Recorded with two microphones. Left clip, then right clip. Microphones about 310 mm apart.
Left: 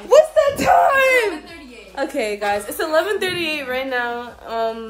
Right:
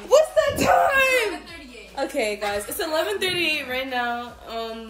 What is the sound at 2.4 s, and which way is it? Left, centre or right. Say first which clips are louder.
Speech: left 5 dB; centre.